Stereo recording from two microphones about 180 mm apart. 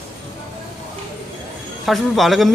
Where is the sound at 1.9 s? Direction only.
Centre (ahead or behind).